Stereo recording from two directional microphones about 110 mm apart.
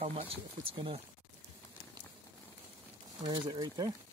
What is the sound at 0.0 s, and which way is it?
Speech, 60° right (ahead or behind).